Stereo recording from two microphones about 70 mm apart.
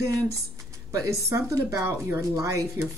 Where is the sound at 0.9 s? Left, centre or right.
Right.